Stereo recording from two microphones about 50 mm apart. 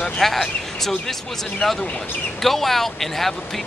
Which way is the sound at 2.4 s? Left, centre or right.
Centre.